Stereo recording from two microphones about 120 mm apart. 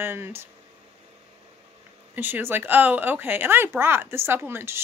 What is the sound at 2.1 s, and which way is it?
Speech, 15° right (ahead or behind).